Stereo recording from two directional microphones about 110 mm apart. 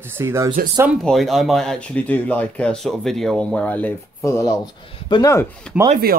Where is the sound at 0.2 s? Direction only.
25° right (ahead or behind).